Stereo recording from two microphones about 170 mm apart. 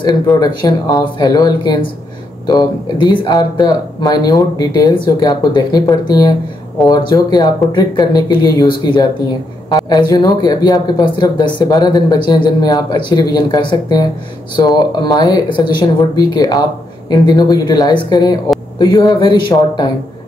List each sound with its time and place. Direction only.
0.0 s speech: 25° left (ahead or behind)
15.0 s speech: 20° left (ahead or behind)